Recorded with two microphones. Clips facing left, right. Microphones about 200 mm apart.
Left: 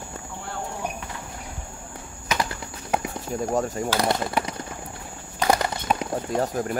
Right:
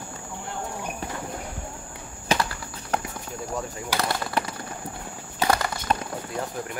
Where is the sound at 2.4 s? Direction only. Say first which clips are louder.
Left 1 dB; 20° left (ahead or behind).